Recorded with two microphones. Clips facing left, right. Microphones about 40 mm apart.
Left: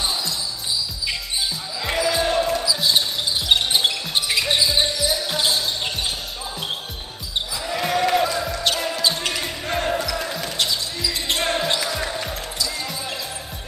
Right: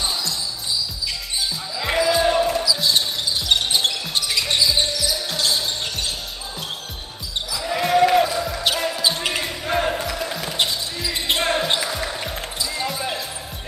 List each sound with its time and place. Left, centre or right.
1.8 s basketball bounce: centre
2.8 s basketball bounce: centre
7.6 s basketball bounce: centre
10.7 s basketball bounce: right
11.4 s basketball bounce: centre
11.8 s music: centre
12.6 s basketball bounce: centre